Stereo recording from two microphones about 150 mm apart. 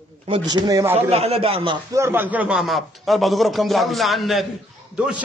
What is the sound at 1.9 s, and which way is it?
A man's voice, 15° right (ahead or behind).